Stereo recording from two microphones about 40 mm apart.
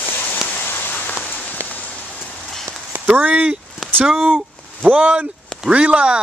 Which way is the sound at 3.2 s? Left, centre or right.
Right.